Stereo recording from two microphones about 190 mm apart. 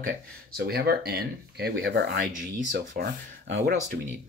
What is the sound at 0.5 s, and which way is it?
Speech, 55° right (ahead or behind).